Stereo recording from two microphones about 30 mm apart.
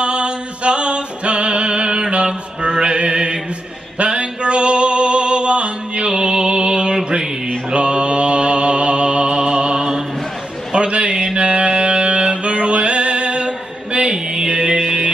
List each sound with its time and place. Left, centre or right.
0.0 s music: right
2.6 s mantra: right
4.0 s music: right
7.4 s mantra: right
10.7 s a sound: right
11.3 s music: right